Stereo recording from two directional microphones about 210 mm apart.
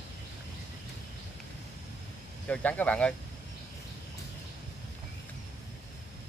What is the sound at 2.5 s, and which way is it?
Speech, 5° left (ahead or behind).